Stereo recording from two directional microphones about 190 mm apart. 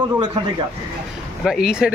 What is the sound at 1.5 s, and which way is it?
Speech, 5° right (ahead or behind).